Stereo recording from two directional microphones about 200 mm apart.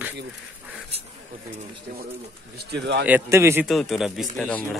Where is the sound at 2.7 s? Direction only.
60° right (ahead or behind).